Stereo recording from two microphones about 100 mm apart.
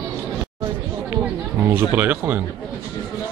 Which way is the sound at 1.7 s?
20° right (ahead or behind).